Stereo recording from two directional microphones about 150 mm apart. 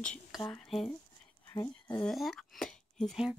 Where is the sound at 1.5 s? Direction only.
25° left (ahead or behind).